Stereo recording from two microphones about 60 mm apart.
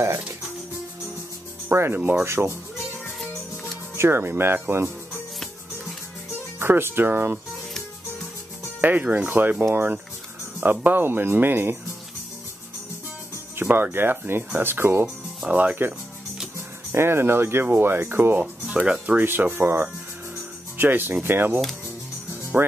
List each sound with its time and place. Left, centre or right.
1.7 s speech: right
2.4 s speech: right
3.9 s speech: right
6.6 s speech: right
8.8 s speech: right
13.6 s music: right
13.9 s speech: right
15.4 s speech: right
16.5 s speech: right
18.9 s speech: right
19.2 s speech: right
22.3 s music: right